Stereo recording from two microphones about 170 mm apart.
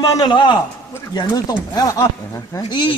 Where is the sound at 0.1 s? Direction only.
25° left (ahead or behind).